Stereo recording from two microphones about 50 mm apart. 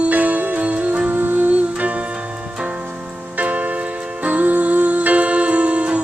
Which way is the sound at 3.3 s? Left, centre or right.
Right.